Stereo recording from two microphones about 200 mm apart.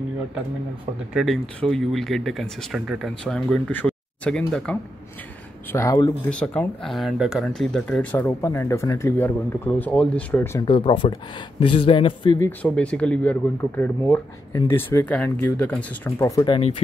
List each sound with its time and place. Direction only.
1.1 s speech: centre (ahead or behind)
5.7 s speech: 15° left (ahead or behind)
6.3 s speech: 5° left (ahead or behind)
10.6 s speech: 25° left (ahead or behind)
12.4 s speech: 5° left (ahead or behind); by 16.8 s 25° left (ahead or behind)